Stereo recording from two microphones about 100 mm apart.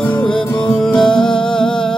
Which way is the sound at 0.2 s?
15° left (ahead or behind).